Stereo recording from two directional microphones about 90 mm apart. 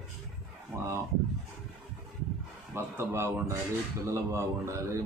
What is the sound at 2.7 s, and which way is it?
A man's voice, 30° right (ahead or behind).